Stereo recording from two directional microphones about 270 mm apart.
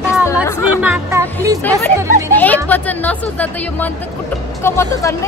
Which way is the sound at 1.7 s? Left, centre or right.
Centre.